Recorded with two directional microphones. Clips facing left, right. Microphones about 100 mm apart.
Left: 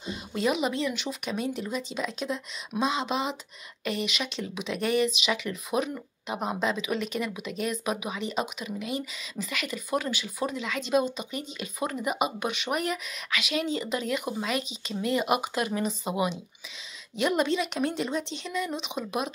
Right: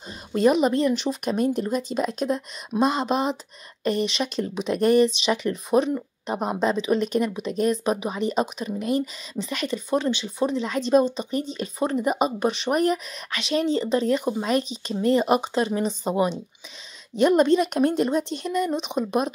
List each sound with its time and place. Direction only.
0.0 s a woman's voice: 40° right (ahead or behind)